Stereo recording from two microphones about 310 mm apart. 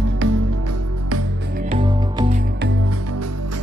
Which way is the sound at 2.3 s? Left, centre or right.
Right.